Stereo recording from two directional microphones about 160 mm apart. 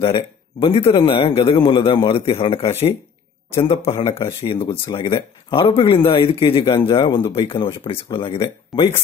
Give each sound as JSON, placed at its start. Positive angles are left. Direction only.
{"t": 0.0, "sound": "speech", "side_deg": 35}
{"t": 8.7, "sound": "speech", "side_deg": 0}